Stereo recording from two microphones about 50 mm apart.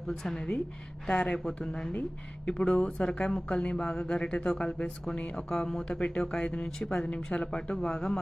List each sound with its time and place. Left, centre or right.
1.0 s speech: left